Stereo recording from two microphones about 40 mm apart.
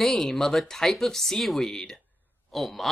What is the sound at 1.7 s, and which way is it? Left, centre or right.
Speech, centre.